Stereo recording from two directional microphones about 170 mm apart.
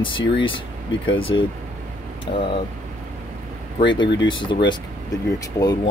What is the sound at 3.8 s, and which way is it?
Speech, 30° left (ahead or behind).